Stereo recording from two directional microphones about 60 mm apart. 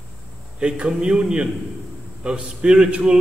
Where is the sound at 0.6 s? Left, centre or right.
Centre.